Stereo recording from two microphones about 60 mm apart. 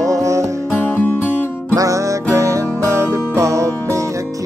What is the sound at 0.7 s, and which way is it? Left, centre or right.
Music, left.